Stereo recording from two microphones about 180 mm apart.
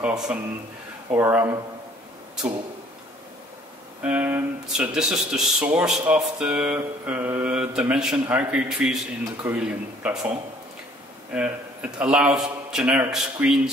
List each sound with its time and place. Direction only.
0.0 s a man's voice: 5° right (ahead or behind)
4.0 s a man's voice: 10° right (ahead or behind)
11.3 s speech: 5° right (ahead or behind)